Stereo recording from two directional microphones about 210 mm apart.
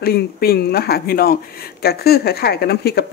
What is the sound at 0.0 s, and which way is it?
Speech, 45° left (ahead or behind).